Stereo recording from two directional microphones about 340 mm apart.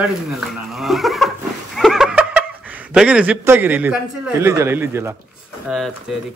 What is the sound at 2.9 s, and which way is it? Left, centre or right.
Speech, centre.